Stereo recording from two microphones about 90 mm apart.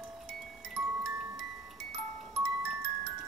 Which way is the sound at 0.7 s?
5° right (ahead or behind).